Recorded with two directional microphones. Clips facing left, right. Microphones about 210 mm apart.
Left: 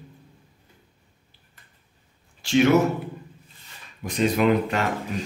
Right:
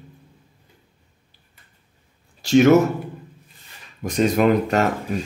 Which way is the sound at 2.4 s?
40° right (ahead or behind).